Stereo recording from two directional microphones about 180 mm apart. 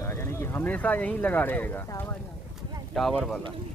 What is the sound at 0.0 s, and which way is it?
Speech, 15° left (ahead or behind).